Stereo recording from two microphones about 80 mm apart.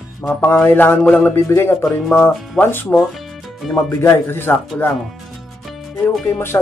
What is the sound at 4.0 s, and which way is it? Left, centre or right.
Speech, left.